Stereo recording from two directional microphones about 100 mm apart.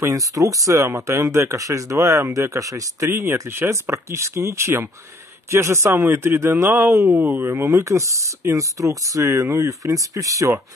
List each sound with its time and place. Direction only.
0.0 s a man's voice: 35° right (ahead or behind)